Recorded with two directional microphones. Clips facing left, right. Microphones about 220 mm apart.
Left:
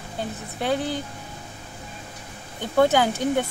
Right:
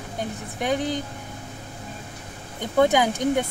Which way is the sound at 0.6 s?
15° right (ahead or behind).